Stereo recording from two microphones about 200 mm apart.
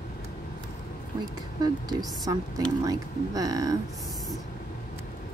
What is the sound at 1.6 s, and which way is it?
A woman's voice, 20° right (ahead or behind).